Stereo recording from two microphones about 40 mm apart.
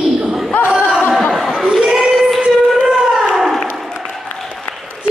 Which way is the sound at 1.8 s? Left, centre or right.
Right.